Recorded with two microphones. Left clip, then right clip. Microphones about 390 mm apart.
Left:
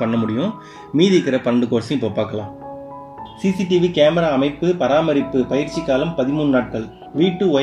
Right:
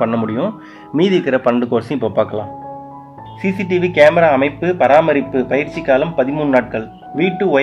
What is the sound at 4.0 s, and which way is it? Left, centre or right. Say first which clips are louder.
Speech: right 8 dB; right.